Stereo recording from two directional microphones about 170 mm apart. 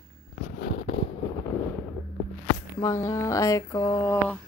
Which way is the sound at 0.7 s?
45° left (ahead or behind).